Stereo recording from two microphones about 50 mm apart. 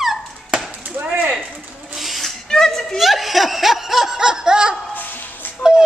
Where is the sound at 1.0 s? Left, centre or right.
Right.